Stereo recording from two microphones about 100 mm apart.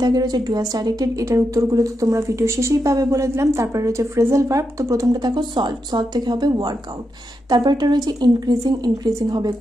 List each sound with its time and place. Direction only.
0.0 s a woman's voice: 40° right (ahead or behind)